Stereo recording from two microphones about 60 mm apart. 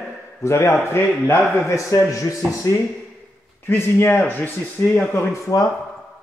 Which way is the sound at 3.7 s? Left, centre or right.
Left.